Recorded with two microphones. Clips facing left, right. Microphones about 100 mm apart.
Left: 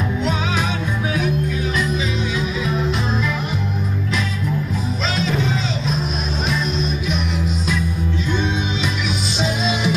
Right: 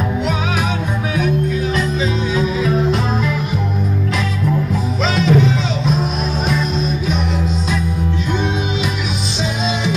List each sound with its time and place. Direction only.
2.3 s music: 45° right (ahead or behind)
5.0 s music: 65° right (ahead or behind)